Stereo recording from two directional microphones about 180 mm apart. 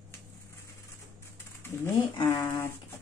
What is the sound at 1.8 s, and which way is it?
Speech, 15° left (ahead or behind).